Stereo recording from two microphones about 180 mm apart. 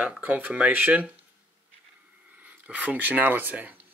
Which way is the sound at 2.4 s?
10° right (ahead or behind).